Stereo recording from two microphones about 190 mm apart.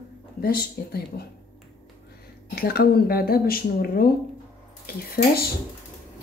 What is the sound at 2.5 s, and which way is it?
Speech, 55° left (ahead or behind).